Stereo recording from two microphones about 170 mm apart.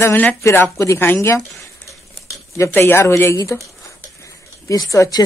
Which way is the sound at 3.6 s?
20° left (ahead or behind).